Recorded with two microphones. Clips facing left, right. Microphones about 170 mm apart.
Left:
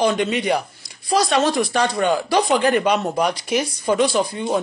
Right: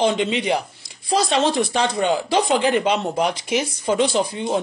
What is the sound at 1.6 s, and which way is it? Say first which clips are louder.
Speech: left 1 dB; 20° right (ahead or behind).